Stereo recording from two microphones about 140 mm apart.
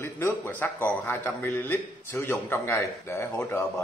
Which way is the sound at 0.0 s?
15° left (ahead or behind).